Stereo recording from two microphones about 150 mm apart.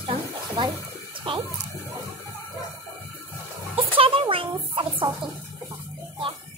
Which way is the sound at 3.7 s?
40° right (ahead or behind).